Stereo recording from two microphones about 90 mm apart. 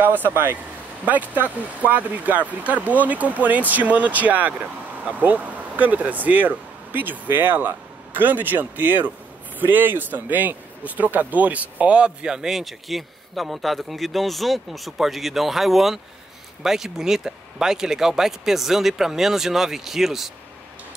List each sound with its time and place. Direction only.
0.0 s speech: 20° right (ahead or behind); by 20.2 s 5° right (ahead or behind)